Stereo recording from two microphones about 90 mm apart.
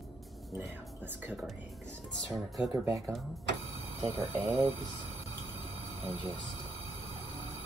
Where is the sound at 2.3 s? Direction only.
Centre (ahead or behind).